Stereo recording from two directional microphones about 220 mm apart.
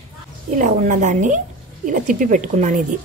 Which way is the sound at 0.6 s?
35° right (ahead or behind).